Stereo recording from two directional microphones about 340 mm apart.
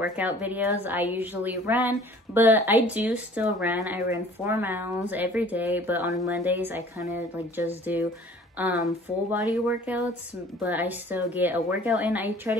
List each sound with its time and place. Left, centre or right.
0.0 s speech: centre